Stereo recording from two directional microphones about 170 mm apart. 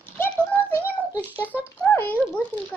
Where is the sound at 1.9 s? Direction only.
10° left (ahead or behind).